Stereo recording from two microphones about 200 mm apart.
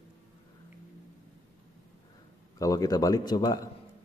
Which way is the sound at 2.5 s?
15° left (ahead or behind).